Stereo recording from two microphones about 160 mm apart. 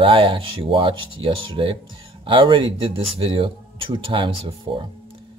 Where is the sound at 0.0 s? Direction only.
35° right (ahead or behind).